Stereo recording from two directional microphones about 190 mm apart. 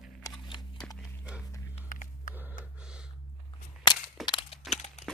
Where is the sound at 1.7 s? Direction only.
45° left (ahead or behind).